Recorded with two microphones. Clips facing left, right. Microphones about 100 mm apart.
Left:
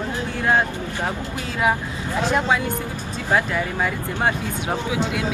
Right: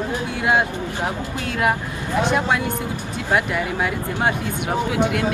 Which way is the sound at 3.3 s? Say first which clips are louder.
Even; 5° right (ahead or behind).